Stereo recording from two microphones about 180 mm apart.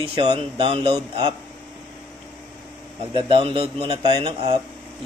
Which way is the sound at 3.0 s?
30° right (ahead or behind).